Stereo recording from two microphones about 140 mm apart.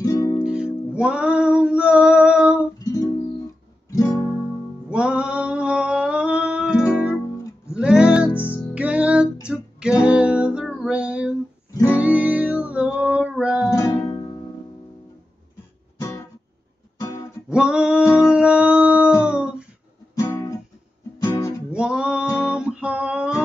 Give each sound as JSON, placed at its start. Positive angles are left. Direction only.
{"t": 0.0, "sound": "music", "side_deg": 25}
{"t": 0.4, "sound": "music", "side_deg": -5}
{"t": 3.9, "sound": "music", "side_deg": 25}
{"t": 4.8, "sound": "music", "side_deg": -5}
{"t": 13.7, "sound": "music", "side_deg": 25}
{"t": 17.5, "sound": "a sound", "side_deg": -5}
{"t": 19.2, "sound": "music", "side_deg": -5}
{"t": 20.2, "sound": "guitar", "side_deg": 20}
{"t": 21.2, "sound": "music", "side_deg": 20}
{"t": 21.7, "sound": "music", "side_deg": -5}
{"t": 22.4, "sound": "guitar", "side_deg": -5}